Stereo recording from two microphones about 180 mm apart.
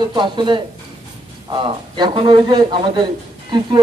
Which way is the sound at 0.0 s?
25° right (ahead or behind).